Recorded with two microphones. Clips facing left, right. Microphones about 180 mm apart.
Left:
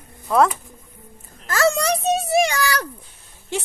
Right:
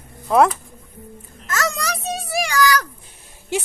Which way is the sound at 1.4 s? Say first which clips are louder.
Left 5 dB; 30° left (ahead or behind).